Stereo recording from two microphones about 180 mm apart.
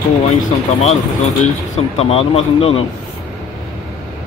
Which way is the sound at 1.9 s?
35° left (ahead or behind).